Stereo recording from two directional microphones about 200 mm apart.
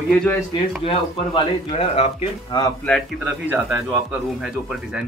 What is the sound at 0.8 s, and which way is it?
Speech, 25° left (ahead or behind).